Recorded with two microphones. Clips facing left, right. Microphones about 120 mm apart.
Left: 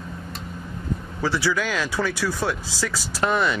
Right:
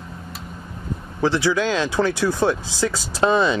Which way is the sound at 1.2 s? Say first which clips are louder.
Right 5 dB; 20° right (ahead or behind).